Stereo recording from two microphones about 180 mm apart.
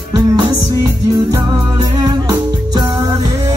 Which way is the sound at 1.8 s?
20° right (ahead or behind).